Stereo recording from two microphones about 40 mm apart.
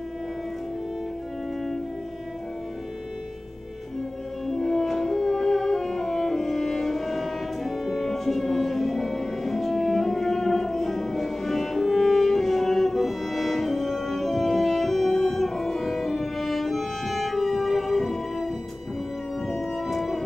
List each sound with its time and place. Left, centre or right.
4.5 s music: centre